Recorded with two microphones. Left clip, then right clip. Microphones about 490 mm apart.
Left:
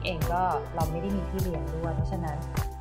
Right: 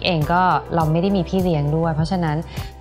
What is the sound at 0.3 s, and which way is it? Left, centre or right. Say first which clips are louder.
Speech: right 10 dB; right.